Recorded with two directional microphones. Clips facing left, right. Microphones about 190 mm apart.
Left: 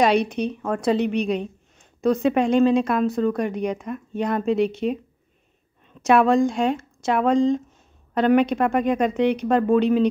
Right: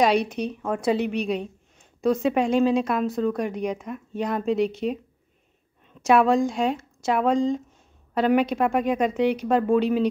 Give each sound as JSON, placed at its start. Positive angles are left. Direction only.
{"t": 0.0, "sound": "a woman's voice", "side_deg": 0}
{"t": 6.0, "sound": "a woman's voice", "side_deg": -5}